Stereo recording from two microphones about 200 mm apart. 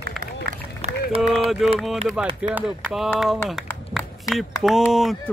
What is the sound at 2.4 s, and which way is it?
Speech, 5° right (ahead or behind).